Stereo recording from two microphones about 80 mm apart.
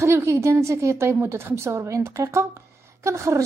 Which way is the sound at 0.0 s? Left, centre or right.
Right.